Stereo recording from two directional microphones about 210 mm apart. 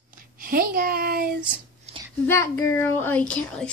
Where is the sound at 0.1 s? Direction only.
40° right (ahead or behind).